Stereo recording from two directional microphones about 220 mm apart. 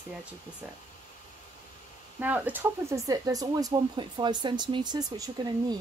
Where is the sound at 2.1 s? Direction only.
10° right (ahead or behind).